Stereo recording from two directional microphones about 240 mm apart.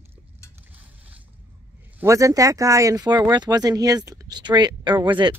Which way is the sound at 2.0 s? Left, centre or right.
Centre.